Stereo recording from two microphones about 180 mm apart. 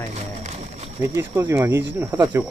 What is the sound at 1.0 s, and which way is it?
Speech, 15° right (ahead or behind).